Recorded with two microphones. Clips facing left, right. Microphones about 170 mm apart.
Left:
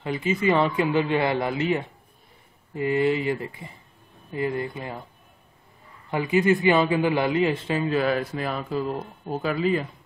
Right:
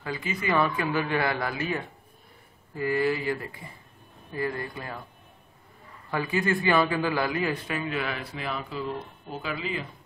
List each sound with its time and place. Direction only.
0.0 s a man's voice: 25° left (ahead or behind)
6.0 s a man's voice: 20° left (ahead or behind); by 9.8 s 45° left (ahead or behind)